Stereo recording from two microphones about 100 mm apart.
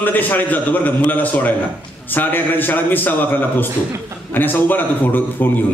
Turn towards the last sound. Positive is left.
turn(degrees=20)  # may be behind; listen again after turning